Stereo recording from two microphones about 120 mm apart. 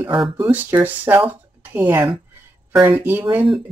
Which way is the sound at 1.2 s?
15° right (ahead or behind).